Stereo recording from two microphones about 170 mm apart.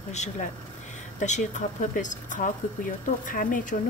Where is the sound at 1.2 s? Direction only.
45° left (ahead or behind).